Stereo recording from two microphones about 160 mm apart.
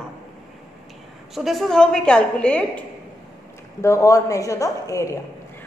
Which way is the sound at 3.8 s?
20° left (ahead or behind).